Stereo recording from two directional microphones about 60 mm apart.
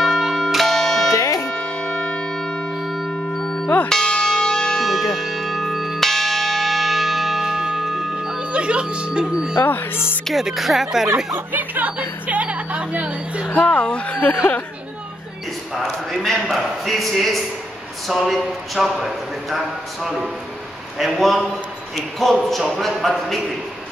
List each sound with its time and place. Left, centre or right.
0.0 s music: centre
1.1 s music: left
1.5 s church bell: centre
2.8 s music: centre
3.1 s music: centre
3.9 s church bell: centre
9.6 s music: left
10.2 s a man's voice: centre
11.3 s speech: right
13.5 s speech: left
15.7 s a man's voice: centre